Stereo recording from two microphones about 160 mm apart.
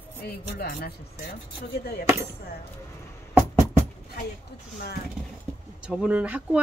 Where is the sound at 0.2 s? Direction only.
80° left.